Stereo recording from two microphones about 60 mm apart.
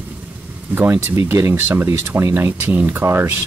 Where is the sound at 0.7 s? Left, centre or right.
Right.